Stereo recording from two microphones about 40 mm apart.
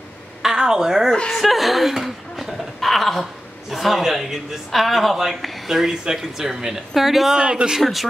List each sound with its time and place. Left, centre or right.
0.4 s a woman's voice: centre
1.4 s chuckle: centre
2.8 s a sound: centre
3.7 s speech: centre
7.3 s a man's voice: right
7.8 s speech: centre